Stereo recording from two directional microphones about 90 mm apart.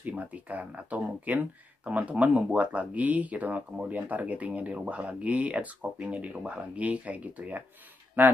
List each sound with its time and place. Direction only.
0.0 s speech: 15° right (ahead or behind)